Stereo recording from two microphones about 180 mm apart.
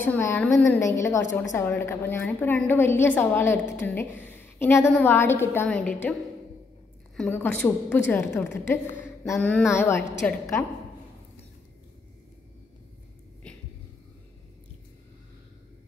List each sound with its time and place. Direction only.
0.0 s a woman's voice: 10° left (ahead or behind)
7.2 s a woman's voice: 10° left (ahead or behind)
9.2 s a sound: 15° left (ahead or behind)
9.7 s a woman's voice: 15° left (ahead or behind)